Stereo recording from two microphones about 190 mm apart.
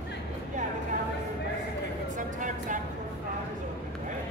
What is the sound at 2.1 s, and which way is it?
Music, 40° right (ahead or behind).